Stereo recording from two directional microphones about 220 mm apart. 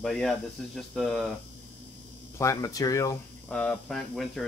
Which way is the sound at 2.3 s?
15° left (ahead or behind).